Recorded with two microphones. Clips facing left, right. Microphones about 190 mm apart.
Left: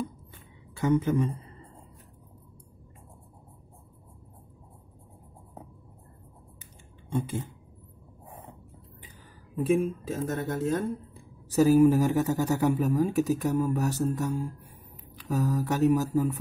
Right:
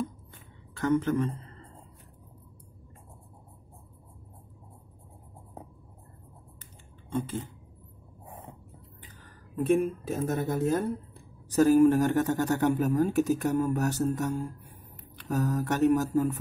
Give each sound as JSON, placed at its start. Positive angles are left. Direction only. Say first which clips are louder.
{"t": 0.7, "sound": "a man's voice", "louder": "left 1 dB", "side_deg": 10}
{"t": 7.1, "sound": "speech", "louder": "left 1 dB", "side_deg": 15}
{"t": 9.6, "sound": "speech", "louder": "even", "side_deg": 0}
{"t": 11.5, "sound": "speech", "louder": "even", "side_deg": 0}